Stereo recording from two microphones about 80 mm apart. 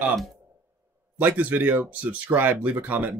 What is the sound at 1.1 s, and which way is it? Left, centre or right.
Speech, right.